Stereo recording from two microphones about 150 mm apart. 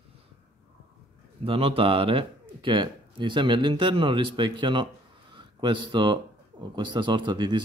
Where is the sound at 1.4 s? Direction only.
35° right (ahead or behind).